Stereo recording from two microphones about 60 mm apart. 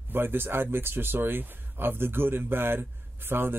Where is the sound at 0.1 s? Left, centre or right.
Right.